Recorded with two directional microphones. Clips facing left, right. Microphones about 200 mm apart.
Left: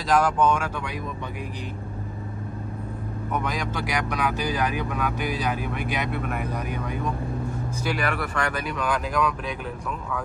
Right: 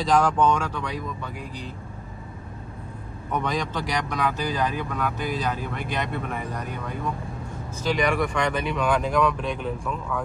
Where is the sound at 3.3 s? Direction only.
5° left (ahead or behind).